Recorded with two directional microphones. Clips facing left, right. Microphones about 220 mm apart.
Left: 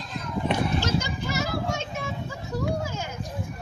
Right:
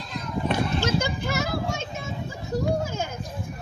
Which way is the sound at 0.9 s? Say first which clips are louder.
Right 2 dB; 50° right (ahead or behind).